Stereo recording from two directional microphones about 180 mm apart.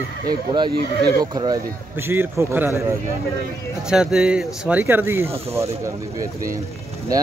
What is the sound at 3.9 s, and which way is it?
Speech, 5° right (ahead or behind).